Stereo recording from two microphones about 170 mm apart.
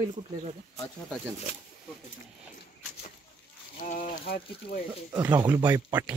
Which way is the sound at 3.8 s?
50° left (ahead or behind).